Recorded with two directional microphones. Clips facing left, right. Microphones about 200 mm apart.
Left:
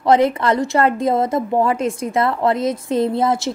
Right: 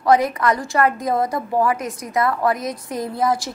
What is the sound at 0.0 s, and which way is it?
Speech, 25° left (ahead or behind).